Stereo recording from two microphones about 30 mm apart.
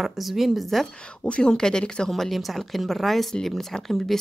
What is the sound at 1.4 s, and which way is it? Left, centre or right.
Speech, left.